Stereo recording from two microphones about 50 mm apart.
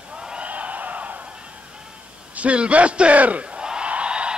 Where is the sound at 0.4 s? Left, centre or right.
Right.